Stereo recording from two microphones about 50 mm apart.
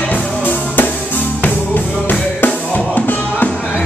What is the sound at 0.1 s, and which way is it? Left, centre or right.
Music, left.